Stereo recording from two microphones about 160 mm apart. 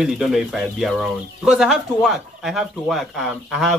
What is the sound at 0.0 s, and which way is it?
Speech, centre (ahead or behind).